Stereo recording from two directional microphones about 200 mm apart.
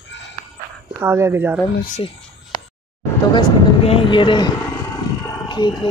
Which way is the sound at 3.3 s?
25° left (ahead or behind).